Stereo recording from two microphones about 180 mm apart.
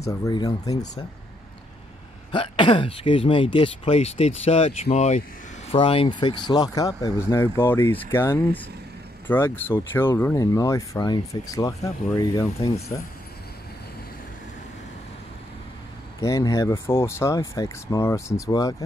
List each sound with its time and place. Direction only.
0.0 s speech: 20° left (ahead or behind)
2.3 s speech: 30° left (ahead or behind)
16.2 s speech: 20° left (ahead or behind)